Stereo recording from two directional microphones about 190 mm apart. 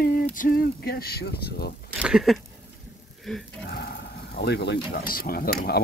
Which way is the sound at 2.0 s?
Centre (ahead or behind).